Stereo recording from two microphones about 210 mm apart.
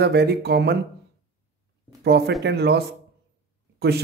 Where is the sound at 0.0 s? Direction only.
50° right (ahead or behind).